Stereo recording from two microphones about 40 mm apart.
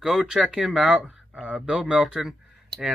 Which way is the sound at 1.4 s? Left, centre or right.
Centre.